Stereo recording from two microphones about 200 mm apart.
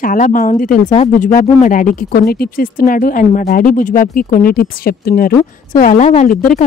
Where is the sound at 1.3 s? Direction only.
40° left (ahead or behind).